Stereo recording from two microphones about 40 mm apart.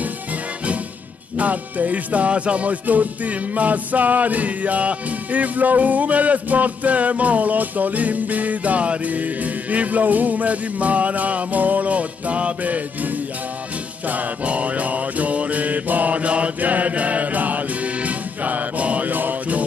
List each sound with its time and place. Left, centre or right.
1.4 s music: right